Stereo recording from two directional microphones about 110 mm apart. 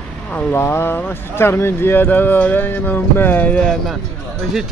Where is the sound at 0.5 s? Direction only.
20° left (ahead or behind).